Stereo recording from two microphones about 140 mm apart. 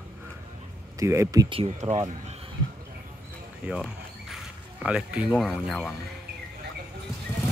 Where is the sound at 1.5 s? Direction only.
45° right (ahead or behind).